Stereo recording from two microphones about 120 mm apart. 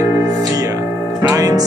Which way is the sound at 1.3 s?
30° right (ahead or behind).